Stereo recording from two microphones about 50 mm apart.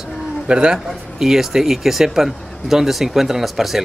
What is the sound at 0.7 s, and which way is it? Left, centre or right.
Speech, centre.